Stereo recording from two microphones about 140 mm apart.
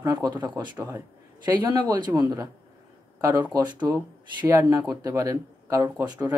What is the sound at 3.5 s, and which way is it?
A man's voice, 30° right (ahead or behind).